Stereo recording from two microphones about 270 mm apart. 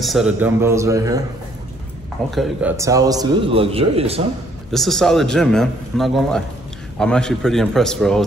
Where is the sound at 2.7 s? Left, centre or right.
Centre.